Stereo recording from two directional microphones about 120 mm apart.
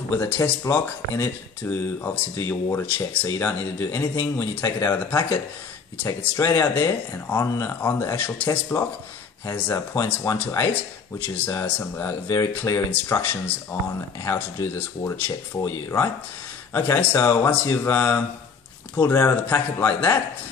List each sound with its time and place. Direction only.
0.1 s speech: 25° left (ahead or behind)